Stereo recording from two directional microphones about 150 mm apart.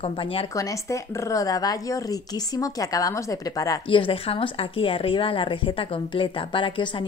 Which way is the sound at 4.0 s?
35° left (ahead or behind).